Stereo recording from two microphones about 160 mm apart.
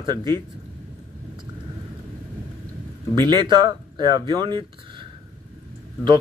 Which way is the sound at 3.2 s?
30° right (ahead or behind).